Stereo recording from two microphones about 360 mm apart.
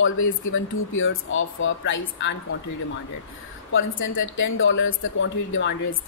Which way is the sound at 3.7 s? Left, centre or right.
Left.